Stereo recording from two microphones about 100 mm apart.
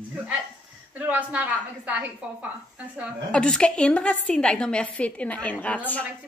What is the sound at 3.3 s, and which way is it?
A woman's voice, 10° left (ahead or behind).